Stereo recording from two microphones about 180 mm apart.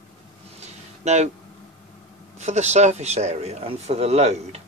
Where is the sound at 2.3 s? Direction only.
40° right (ahead or behind).